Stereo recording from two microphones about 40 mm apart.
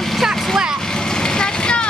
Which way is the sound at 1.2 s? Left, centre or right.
Centre.